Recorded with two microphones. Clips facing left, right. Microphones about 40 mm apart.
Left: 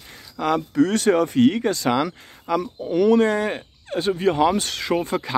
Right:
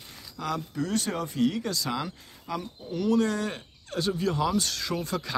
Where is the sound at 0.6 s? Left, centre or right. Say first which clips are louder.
Left 10 dB; left.